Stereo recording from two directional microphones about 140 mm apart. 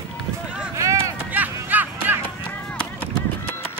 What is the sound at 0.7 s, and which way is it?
Run, 25° right (ahead or behind).